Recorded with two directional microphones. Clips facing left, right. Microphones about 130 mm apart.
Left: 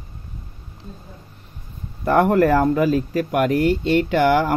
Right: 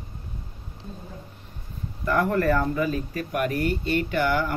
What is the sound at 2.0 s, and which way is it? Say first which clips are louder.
Speech: left 7 dB; 60° left (ahead or behind).